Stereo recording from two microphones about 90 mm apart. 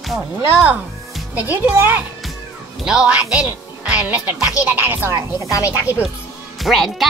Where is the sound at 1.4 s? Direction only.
20° right (ahead or behind).